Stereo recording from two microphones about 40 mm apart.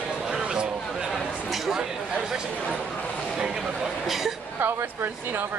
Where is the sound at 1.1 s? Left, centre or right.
Centre.